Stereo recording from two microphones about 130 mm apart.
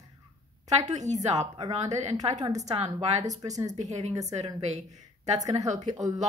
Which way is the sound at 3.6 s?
60° right (ahead or behind).